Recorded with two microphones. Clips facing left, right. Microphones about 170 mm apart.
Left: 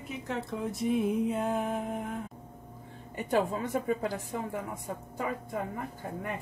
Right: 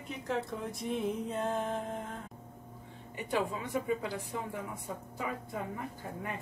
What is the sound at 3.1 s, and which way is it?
A woman's voice, 45° left (ahead or behind).